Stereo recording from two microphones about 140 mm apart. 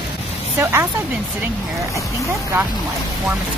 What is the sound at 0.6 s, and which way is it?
Speech, 15° right (ahead or behind).